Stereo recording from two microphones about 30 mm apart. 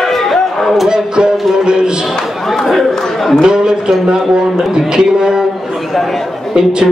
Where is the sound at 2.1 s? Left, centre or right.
Centre.